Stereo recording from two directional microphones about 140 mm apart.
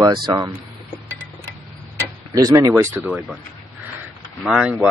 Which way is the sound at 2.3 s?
25° right (ahead or behind).